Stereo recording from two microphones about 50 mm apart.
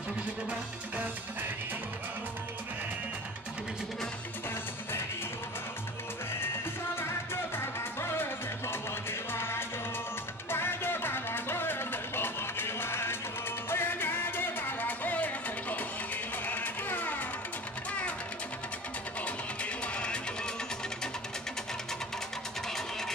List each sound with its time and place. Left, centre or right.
7.5 s music: left
19.2 s music: left